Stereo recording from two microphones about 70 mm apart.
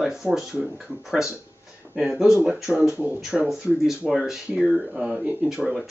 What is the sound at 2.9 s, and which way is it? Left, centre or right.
Speech, right.